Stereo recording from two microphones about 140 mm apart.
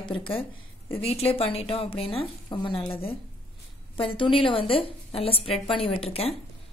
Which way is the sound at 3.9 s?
40° left (ahead or behind).